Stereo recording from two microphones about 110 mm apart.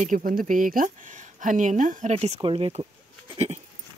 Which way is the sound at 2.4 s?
55° right (ahead or behind).